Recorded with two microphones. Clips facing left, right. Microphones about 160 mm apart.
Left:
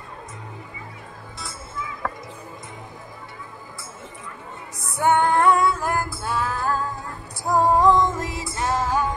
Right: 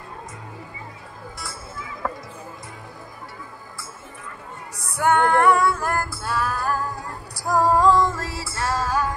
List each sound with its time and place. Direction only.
1.4 s music: 20° left (ahead or behind)
4.9 s music: 20° left (ahead or behind)